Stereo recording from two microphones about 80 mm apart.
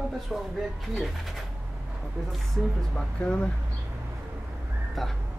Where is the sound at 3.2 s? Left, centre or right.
Centre.